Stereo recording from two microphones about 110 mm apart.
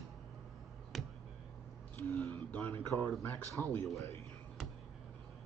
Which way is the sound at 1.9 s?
25° left (ahead or behind).